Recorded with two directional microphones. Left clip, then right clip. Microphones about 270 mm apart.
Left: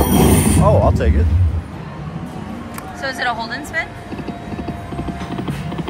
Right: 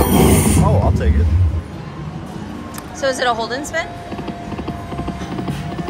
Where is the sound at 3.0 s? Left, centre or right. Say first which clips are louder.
Right 4 dB; centre.